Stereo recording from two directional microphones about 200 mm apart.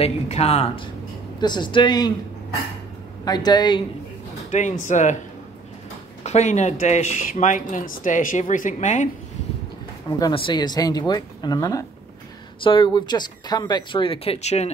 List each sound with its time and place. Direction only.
0.0 s speech: 30° left (ahead or behind)
3.3 s speech: 20° left (ahead or behind)
4.5 s speech: 40° left (ahead or behind)
6.2 s speech: 35° left (ahead or behind)
10.1 s speech: 20° left (ahead or behind)